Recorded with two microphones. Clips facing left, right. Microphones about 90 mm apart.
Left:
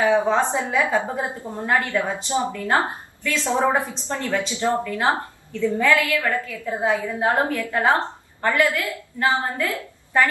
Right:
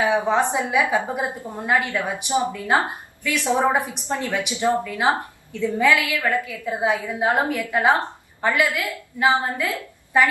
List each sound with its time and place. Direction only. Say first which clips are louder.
0.3 s a woman's voice: even; 15° right (ahead or behind)